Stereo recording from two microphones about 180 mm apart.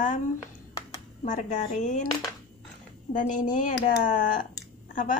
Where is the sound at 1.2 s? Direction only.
45° left (ahead or behind).